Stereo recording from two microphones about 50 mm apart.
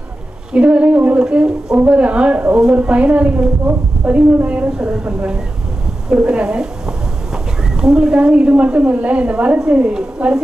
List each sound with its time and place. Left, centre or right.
0.5 s a woman's voice: right
1.2 s a woman's voice: centre
7.8 s a woman's voice: centre